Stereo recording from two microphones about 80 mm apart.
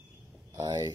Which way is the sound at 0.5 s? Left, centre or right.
Right.